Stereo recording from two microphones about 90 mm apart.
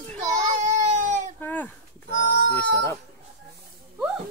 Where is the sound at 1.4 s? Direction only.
20° left (ahead or behind).